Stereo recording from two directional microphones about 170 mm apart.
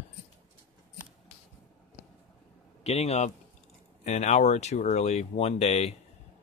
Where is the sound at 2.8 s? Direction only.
35° left (ahead or behind).